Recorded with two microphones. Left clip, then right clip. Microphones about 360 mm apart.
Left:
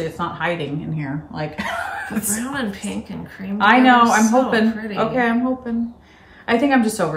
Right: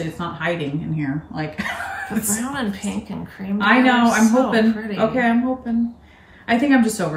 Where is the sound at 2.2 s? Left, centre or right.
Centre.